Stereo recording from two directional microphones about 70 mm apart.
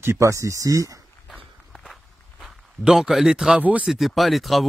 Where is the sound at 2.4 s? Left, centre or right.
Centre.